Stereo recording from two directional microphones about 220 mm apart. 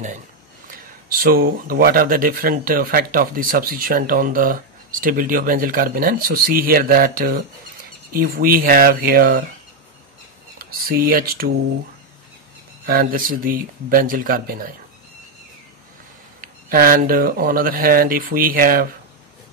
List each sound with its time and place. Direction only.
1.1 s speech: 40° right (ahead or behind)
10.6 s speech: 40° right (ahead or behind)
12.8 s speech: 40° right (ahead or behind)
16.3 s speech: 40° right (ahead or behind)